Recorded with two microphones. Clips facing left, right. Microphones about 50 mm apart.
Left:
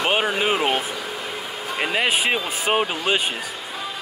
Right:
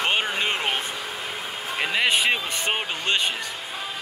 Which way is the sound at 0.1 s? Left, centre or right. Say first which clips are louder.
Left 4 dB; centre.